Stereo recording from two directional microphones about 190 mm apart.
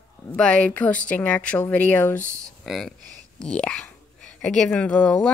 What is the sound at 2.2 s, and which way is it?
Speech, 15° right (ahead or behind).